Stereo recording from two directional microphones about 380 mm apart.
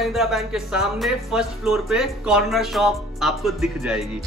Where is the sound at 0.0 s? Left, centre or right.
Centre.